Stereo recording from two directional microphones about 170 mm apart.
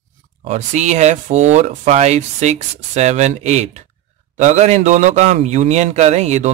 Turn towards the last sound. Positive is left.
turn(degrees=-40)  # may be behind; listen again after turning